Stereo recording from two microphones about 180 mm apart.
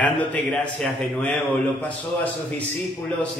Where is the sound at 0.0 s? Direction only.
10° left (ahead or behind).